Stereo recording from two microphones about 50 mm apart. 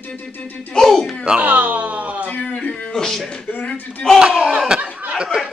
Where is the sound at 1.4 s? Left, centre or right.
Right.